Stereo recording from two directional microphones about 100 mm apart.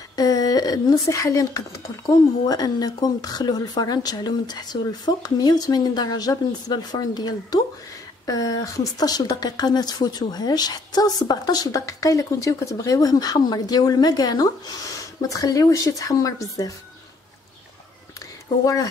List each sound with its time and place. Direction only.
0.1 s a sound: 40° left (ahead or behind)
1.0 s speech: 30° left (ahead or behind)
18.5 s speech: 45° left (ahead or behind)